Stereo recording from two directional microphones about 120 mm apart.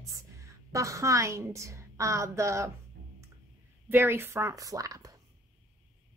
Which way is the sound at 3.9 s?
20° right (ahead or behind).